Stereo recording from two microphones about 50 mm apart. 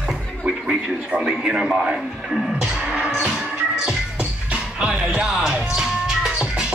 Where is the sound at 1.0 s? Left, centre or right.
Centre.